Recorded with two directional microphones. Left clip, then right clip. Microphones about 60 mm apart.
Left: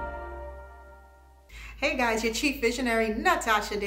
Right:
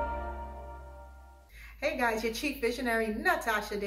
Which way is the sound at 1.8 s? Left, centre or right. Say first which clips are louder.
Left 4 dB; right.